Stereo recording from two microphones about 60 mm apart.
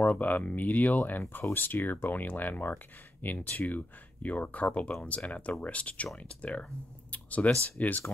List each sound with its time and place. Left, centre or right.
0.0 s speech: left
7.1 s a sound: left
7.8 s speech: left